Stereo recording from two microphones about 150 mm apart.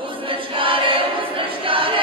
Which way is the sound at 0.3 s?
35° right (ahead or behind).